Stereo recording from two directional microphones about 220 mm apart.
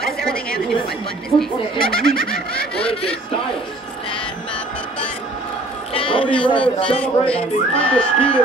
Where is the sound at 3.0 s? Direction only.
25° left (ahead or behind).